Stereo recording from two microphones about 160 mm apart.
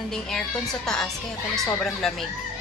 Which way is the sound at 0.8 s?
5° left (ahead or behind).